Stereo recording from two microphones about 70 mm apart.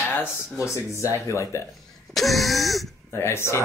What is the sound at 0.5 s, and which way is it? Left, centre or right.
Speech, left.